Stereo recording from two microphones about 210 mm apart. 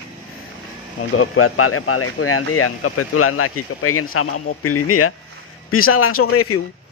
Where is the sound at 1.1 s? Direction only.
75° left (ahead or behind).